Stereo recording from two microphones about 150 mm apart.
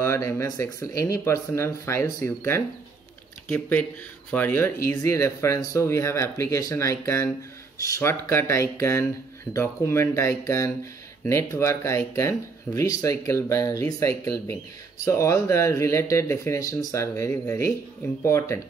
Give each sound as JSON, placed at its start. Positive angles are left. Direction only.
{"t": 0.0, "sound": "speech", "side_deg": 20}